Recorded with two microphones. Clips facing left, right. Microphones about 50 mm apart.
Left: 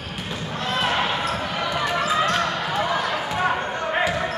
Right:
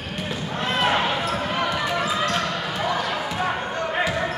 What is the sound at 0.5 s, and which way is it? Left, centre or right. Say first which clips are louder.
Basketball bounce: right 2 dB; centre.